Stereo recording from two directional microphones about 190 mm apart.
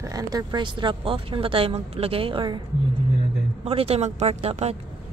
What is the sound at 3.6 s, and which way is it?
Speech, 30° right (ahead or behind).